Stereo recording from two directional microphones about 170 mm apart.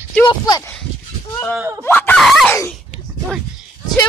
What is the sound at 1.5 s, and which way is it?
Speech, 15° right (ahead or behind).